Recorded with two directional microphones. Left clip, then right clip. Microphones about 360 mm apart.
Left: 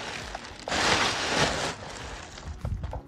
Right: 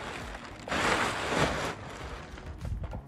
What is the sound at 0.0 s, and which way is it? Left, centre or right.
Music, left.